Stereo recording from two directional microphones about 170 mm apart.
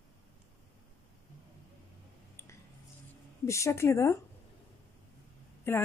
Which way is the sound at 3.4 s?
15° left (ahead or behind).